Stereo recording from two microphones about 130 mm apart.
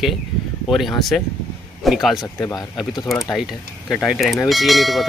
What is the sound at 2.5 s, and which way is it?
Speech, 30° left (ahead or behind).